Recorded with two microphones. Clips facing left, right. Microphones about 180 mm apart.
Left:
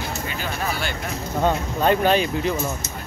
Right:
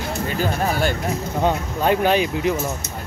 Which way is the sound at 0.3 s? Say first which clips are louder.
Right 8 dB; 45° right (ahead or behind).